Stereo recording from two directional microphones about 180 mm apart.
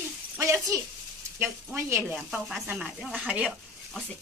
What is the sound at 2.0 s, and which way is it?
Speech, centre (ahead or behind).